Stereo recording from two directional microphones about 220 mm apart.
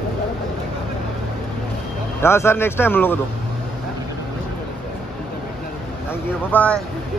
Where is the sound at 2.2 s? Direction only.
10° left (ahead or behind).